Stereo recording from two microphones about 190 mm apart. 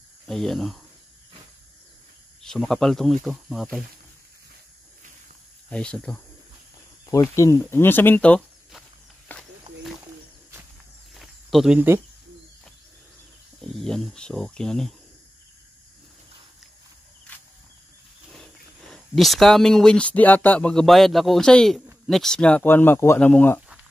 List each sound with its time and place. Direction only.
0.3 s speech: centre (ahead or behind)
2.4 s speech: centre (ahead or behind)
5.7 s speech: 5° left (ahead or behind)
7.1 s speech: 15° left (ahead or behind)
9.3 s a sound: 5° left (ahead or behind)
11.1 s cricket: centre (ahead or behind)
13.6 s speech: 5° left (ahead or behind)
17.3 s a sound: 5° left (ahead or behind)
18.3 s speech: centre (ahead or behind)